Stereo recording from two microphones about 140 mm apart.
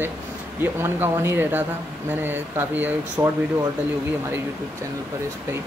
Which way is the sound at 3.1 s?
25° right (ahead or behind).